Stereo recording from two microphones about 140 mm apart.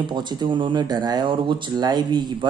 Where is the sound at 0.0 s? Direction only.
35° right (ahead or behind).